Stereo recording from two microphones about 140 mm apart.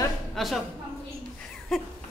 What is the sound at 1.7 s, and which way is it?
Speech, centre (ahead or behind).